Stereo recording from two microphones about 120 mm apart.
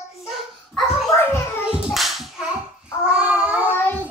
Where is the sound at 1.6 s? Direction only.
5° right (ahead or behind).